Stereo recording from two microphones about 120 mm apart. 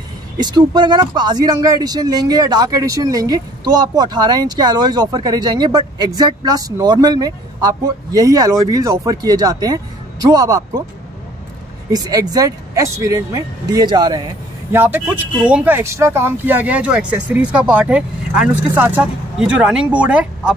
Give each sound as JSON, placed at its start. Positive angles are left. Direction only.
{"t": 0.4, "sound": "speech", "side_deg": -35}
{"t": 11.9, "sound": "speech", "side_deg": -30}
{"t": 14.7, "sound": "speech", "side_deg": -20}